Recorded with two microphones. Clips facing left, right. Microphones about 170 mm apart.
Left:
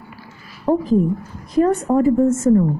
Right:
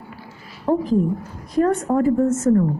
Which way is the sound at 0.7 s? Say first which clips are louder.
Left 2 dB; 10° left (ahead or behind).